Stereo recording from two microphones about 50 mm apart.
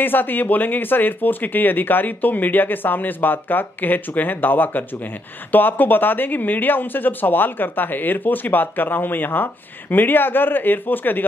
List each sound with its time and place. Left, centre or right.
0.0 s speech: left